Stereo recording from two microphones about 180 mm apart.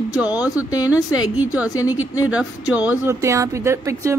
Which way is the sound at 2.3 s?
5° right (ahead or behind).